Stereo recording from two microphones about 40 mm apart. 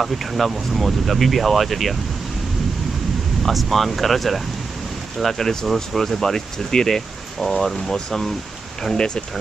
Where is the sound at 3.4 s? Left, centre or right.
Centre.